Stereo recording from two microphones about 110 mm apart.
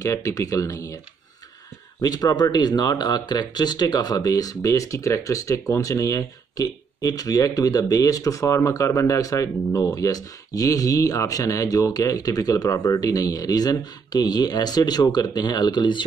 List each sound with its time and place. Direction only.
0.0 s speech: 30° left (ahead or behind)
2.0 s speech: 35° left (ahead or behind)